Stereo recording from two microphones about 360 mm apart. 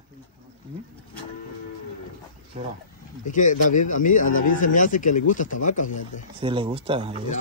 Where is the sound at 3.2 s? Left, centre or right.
Left.